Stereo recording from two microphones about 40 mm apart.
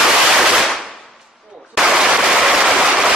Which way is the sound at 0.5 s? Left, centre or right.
Centre.